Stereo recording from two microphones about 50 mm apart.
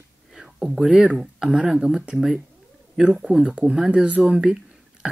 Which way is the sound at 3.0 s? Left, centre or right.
Right.